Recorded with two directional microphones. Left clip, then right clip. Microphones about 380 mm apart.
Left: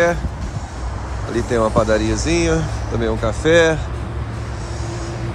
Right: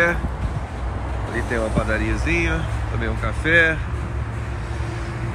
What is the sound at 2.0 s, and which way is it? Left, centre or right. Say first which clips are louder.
Speech: left 3 dB; centre.